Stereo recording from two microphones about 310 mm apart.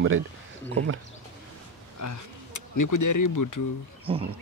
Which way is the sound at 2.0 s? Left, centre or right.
Left.